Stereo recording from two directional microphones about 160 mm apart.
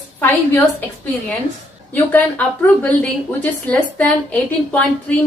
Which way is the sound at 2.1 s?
10° left (ahead or behind).